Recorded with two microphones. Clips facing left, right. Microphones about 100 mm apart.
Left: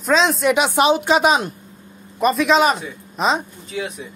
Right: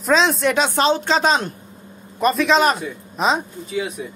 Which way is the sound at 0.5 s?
15° left (ahead or behind).